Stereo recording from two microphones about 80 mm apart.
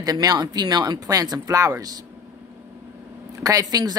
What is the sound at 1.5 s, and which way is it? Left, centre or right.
Speech, right.